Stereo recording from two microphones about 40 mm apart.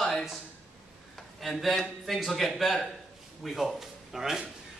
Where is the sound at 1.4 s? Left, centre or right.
Centre.